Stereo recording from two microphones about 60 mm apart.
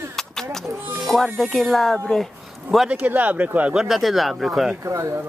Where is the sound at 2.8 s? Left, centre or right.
Right.